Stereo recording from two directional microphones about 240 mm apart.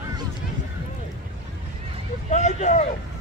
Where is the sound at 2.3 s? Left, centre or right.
Left.